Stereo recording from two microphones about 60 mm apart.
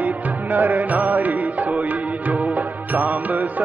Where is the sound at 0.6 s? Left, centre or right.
Right.